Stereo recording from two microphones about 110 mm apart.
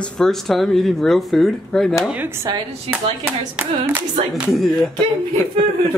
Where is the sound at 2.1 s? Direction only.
20° right (ahead or behind).